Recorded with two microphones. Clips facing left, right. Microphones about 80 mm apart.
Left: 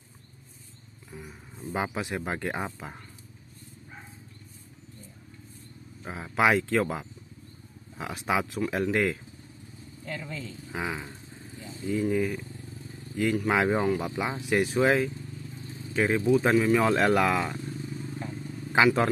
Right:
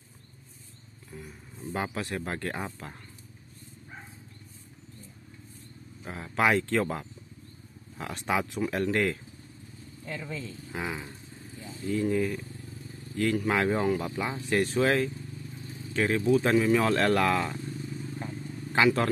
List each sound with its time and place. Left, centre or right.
1.1 s speech: centre
6.0 s speech: centre
10.0 s speech: centre
10.7 s speech: centre
11.1 s vehicle: left
12.0 s speech: centre
18.7 s speech: centre